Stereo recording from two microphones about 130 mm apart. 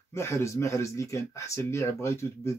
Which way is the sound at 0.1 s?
20° left (ahead or behind).